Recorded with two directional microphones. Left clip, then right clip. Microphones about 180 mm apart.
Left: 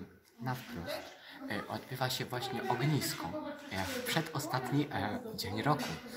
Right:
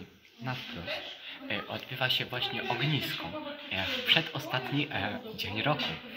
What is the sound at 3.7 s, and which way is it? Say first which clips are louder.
Speech: right 10 dB; 25° right (ahead or behind).